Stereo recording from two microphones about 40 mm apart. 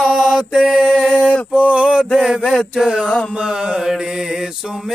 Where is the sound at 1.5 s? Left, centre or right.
Right.